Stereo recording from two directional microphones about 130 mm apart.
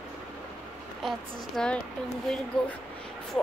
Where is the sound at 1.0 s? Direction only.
5° left (ahead or behind).